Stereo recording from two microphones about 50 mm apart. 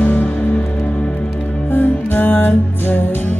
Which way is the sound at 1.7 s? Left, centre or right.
Left.